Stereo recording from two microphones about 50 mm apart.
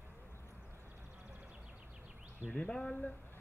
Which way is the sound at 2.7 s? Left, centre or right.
Centre.